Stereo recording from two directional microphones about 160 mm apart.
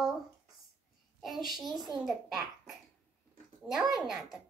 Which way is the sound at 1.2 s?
Centre (ahead or behind).